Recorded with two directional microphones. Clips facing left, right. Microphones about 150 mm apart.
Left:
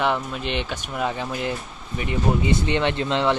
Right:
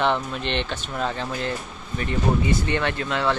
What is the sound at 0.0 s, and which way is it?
Speech, 5° left (ahead or behind).